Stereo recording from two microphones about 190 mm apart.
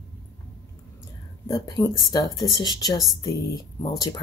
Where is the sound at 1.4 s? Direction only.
20° left (ahead or behind).